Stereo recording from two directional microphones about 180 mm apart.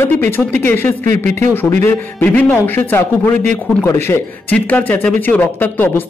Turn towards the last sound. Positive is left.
turn(degrees=10)  # may be behind; listen again after turning